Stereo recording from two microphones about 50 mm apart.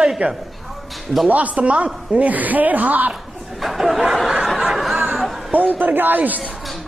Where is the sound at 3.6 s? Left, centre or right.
Centre.